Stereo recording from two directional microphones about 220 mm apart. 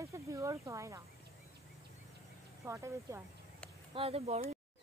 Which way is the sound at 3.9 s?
25° right (ahead or behind).